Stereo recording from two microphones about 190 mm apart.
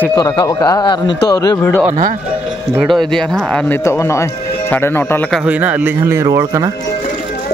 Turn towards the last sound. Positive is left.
turn(degrees=-20)  # may be behind; listen again after turning